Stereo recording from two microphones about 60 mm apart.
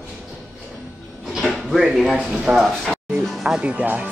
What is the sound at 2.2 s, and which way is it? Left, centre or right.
Speech, centre.